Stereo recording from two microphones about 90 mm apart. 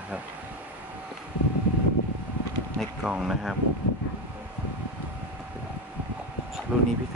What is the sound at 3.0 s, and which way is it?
Speech, 5° right (ahead or behind).